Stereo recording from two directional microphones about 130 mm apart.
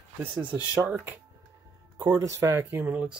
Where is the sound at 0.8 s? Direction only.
15° right (ahead or behind).